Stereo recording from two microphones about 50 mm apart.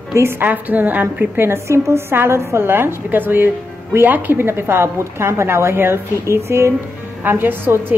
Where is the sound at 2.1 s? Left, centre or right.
Right.